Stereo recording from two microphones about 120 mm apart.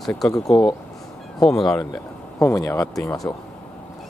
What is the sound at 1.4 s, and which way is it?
Speech, 5° left (ahead or behind).